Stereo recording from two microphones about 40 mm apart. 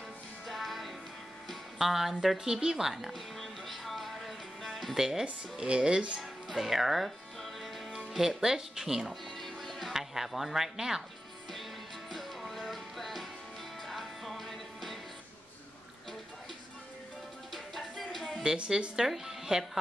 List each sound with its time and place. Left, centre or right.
0.5 s music: centre
2.3 s speech: centre
3.3 s music: centre
4.9 s speech: centre
5.2 s speech: right
6.5 s music: centre
8.1 s speech: centre
9.4 s music: centre
9.9 s speech: centre
12.1 s music: centre
18.7 s speech: centre